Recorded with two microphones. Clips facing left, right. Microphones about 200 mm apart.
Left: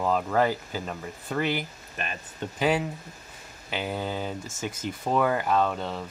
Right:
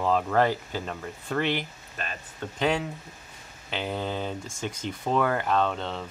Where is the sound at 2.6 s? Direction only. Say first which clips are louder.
Left 1 dB; 5° left (ahead or behind).